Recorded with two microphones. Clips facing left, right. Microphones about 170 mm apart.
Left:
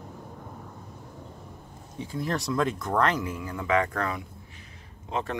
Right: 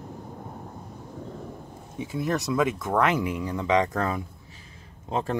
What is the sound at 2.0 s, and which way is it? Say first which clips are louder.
Speech: right 3 dB; 5° right (ahead or behind).